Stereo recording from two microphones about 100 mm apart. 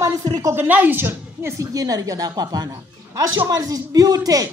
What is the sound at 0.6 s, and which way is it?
A woman's voice, 20° right (ahead or behind).